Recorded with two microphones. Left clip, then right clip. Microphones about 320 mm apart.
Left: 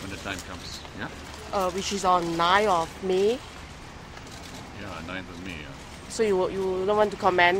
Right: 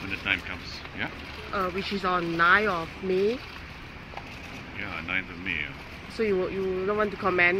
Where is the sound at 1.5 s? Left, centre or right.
Centre.